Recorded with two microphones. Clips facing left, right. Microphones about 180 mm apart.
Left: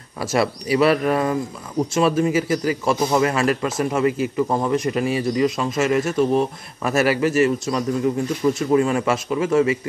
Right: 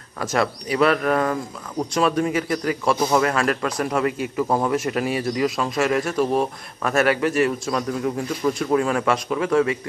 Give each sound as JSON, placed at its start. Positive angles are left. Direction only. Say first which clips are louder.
{"t": 0.2, "sound": "a man's voice", "louder": "left 2 dB", "side_deg": 10}